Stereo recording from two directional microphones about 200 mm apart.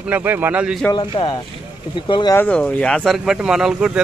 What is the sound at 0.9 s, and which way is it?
Speech, 25° left (ahead or behind).